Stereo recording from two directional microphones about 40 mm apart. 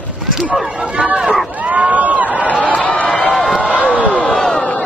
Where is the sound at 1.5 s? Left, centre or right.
Right.